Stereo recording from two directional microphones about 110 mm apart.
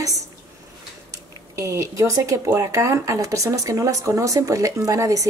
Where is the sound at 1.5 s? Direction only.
25° right (ahead or behind).